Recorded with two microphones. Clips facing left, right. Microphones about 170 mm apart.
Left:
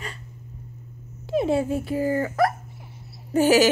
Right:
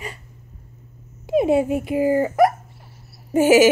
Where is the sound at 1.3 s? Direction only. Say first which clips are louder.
Right 4 dB; 15° right (ahead or behind).